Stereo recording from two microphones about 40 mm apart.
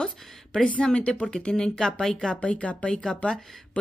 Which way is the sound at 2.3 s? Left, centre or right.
Left.